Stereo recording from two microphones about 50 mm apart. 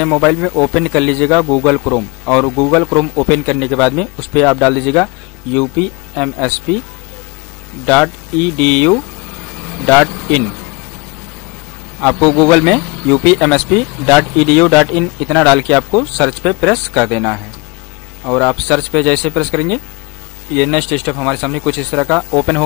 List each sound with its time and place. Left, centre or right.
0.0 s speech: centre
8.5 s speech: centre
12.0 s speech: centre
18.4 s speech: centre